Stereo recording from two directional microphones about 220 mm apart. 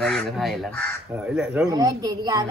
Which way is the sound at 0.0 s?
Centre (ahead or behind).